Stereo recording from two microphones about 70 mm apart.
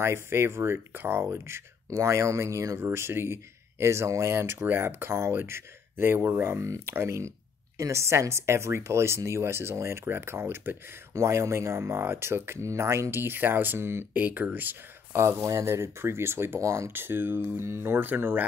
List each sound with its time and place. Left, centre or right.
0.0 s speech: right
11.1 s speech: right
14.1 s speech: right
15.1 s speech: right
16.5 s speech: right
16.9 s speech: right
17.9 s speech: right